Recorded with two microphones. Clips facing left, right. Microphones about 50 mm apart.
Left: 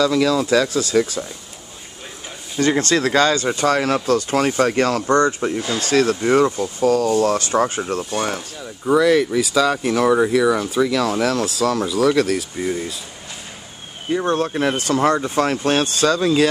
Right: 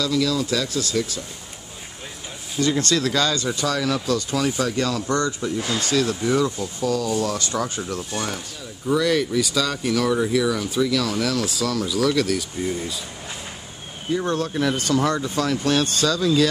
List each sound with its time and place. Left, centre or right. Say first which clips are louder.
0.0 s speech: left 5 dB; left
2.6 s speech: left 4 dB; left
5.0 s speech: left 6 dB; left
8.9 s speech: left 5 dB; centre
9.6 s speech: left 8 dB; left
14.1 s speech: left 4 dB; left